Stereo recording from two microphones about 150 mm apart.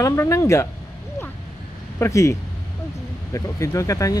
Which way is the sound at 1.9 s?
20° left (ahead or behind).